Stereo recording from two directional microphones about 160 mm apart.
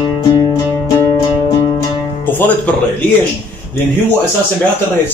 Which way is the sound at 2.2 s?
10° left (ahead or behind).